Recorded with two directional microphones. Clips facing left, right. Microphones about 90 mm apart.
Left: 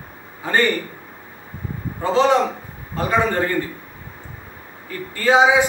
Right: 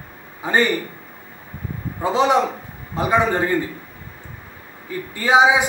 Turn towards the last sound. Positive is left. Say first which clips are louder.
# even
turn(degrees=-15)  # may be behind; listen again after turning